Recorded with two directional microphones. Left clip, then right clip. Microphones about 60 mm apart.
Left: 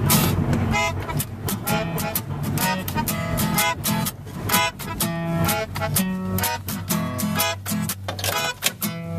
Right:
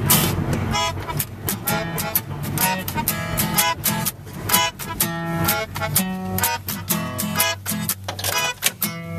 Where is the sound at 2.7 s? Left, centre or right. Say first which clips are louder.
Right 1 dB; centre.